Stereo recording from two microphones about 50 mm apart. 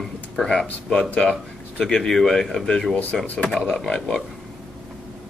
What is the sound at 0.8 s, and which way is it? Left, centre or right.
Speech, left.